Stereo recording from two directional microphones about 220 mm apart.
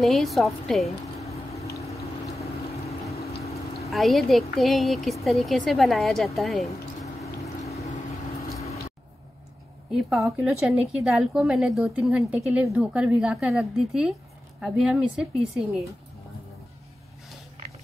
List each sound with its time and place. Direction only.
0.0 s a woman's voice: centre (ahead or behind)
0.8 s a sound: 30° left (ahead or behind)
3.1 s water: 30° left (ahead or behind)
3.9 s a woman's voice: centre (ahead or behind)
7.6 s boat: 30° left (ahead or behind)
9.9 s a woman's voice: 5° right (ahead or behind)